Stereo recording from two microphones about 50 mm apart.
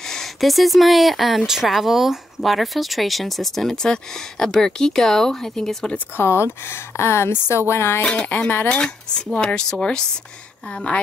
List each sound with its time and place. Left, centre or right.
0.1 s speech: centre
6.1 s a woman's voice: left
8.0 s speech: centre